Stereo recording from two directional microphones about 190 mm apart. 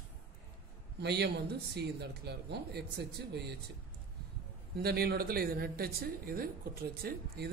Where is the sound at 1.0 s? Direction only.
60° right (ahead or behind).